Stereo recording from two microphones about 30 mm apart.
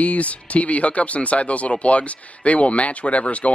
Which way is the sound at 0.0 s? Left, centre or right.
Left.